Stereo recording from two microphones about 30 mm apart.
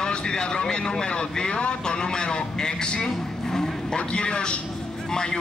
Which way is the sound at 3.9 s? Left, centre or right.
Left.